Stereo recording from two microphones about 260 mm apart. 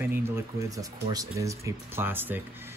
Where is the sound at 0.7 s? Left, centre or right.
Centre.